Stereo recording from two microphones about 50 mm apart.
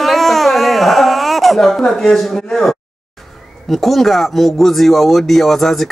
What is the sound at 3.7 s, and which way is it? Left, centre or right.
A man's voice, centre.